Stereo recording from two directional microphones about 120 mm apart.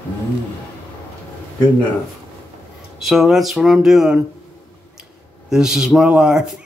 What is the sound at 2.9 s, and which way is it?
A man's voice, centre (ahead or behind).